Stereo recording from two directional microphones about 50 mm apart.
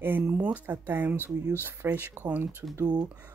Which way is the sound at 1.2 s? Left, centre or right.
Left.